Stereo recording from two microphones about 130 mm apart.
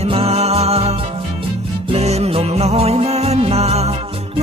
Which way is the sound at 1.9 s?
55° right (ahead or behind).